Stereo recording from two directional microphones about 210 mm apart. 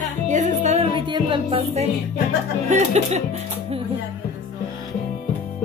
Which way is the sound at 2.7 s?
35° right (ahead or behind).